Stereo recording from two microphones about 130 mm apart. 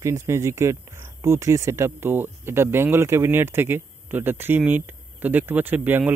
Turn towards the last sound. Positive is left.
turn(degrees=-15)  # may be behind; listen again after turning